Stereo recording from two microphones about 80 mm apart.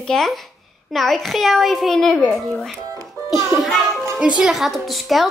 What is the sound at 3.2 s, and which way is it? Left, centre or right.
Music, right.